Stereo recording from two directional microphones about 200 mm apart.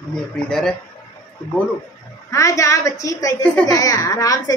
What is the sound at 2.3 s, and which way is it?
A woman's voice, 15° left (ahead or behind).